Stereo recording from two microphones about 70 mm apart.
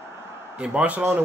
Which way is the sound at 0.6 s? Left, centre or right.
Centre.